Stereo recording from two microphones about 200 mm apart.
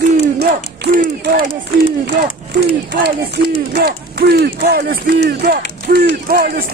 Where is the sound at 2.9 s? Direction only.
55° right (ahead or behind).